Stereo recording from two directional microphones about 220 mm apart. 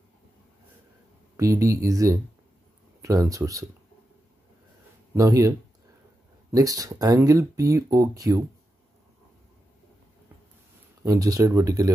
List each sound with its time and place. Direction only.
1.3 s speech: 15° right (ahead or behind)
5.1 s speech: 15° right (ahead or behind)
6.5 s speech: 15° right (ahead or behind)
11.0 s speech: 15° right (ahead or behind)